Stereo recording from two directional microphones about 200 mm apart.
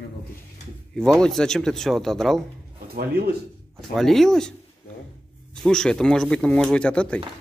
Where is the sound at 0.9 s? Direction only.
5° left (ahead or behind).